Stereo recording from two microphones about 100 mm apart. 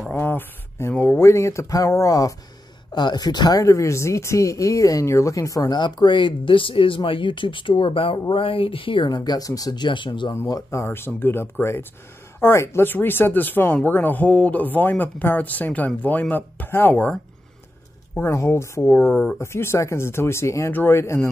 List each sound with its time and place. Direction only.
0.1 s speech: 20° left (ahead or behind)
2.9 s speech: 50° left (ahead or behind)
3.6 s speech: 30° left (ahead or behind)
5.8 s speech: 50° left (ahead or behind)
10.3 s speech: 30° left (ahead or behind); by 17.2 s 15° left (ahead or behind)
18.1 s speech: 25° left (ahead or behind)